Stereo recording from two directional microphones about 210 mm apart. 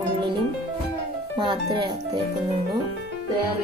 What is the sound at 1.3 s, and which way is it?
Speech, 25° right (ahead or behind).